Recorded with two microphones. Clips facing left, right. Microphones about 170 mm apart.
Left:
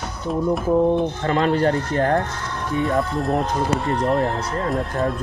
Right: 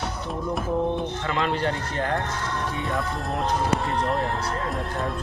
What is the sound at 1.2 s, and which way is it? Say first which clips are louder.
Speech: left 6 dB; 45° left (ahead or behind).